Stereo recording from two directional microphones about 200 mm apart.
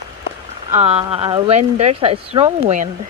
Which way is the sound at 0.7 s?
30° right (ahead or behind).